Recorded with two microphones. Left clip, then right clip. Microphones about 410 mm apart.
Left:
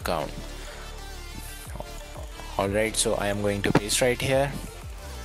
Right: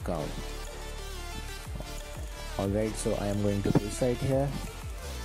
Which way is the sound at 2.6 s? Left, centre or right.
Left.